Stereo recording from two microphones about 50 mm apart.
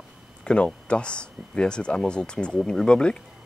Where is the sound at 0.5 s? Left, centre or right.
Centre.